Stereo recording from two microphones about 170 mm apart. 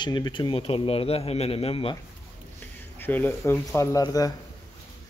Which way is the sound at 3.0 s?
10° left (ahead or behind).